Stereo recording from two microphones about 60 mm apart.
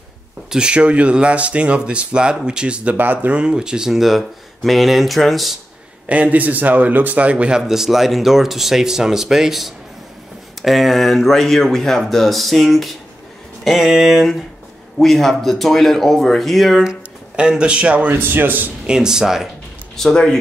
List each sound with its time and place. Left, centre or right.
0.5 s speech: centre
3.3 s a man's voice: centre
6.0 s a man's voice: right; by 16.9 s centre
17.4 s speech: centre
18.1 s a man's voice: right
18.9 s a man's voice: centre
20.0 s speech: centre